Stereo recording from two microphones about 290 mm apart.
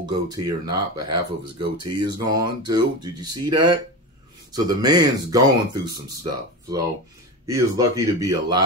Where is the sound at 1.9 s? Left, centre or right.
Centre.